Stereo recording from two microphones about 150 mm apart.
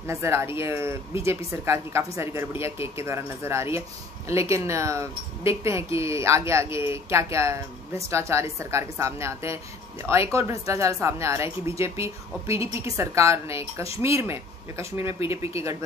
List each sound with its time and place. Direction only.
0.0 s a woman's voice: 20° right (ahead or behind)